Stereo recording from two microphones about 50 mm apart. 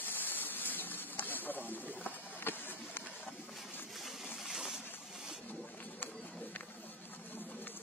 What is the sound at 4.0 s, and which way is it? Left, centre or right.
Water, centre.